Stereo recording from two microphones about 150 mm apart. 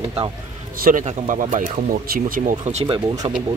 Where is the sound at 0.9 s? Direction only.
60° right (ahead or behind).